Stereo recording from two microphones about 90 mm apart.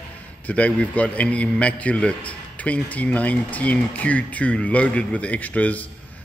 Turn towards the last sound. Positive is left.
turn(degrees=15)  # may be behind; listen again after turning